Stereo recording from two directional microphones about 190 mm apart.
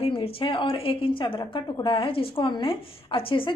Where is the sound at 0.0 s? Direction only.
30° left (ahead or behind).